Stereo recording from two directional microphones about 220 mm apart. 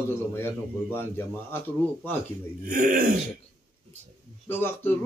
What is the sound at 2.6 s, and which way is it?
Speech, 40° right (ahead or behind).